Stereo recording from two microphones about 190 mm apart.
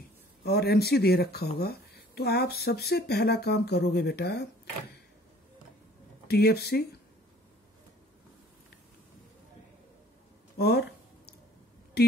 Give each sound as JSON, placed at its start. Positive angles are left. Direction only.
{"t": 0.4, "sound": "speech", "side_deg": 55}
{"t": 6.2, "sound": "speech", "side_deg": 55}
{"t": 10.6, "sound": "a sound", "side_deg": 60}